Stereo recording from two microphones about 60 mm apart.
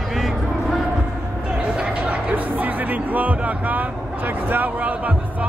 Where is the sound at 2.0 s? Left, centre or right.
Right.